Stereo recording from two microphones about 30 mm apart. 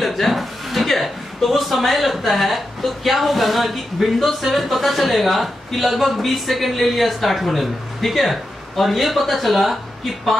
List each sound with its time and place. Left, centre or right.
0.0 s speech: centre